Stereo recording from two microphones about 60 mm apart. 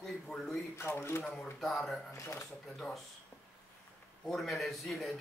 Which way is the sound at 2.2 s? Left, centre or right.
Left.